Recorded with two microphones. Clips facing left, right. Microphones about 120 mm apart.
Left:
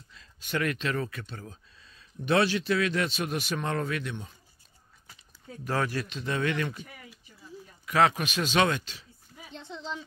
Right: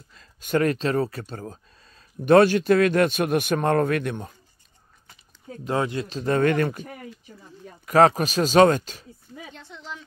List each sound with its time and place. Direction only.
0.1 s speech: 45° right (ahead or behind)
5.6 s speech: 20° right (ahead or behind)
6.0 s speech: 40° right (ahead or behind)
9.5 s speech: 20° left (ahead or behind)